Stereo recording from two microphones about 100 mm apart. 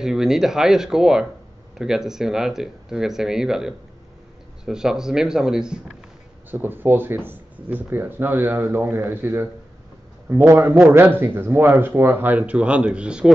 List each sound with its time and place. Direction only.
0.0 s speech: 5° right (ahead or behind)
6.5 s speech: 20° right (ahead or behind)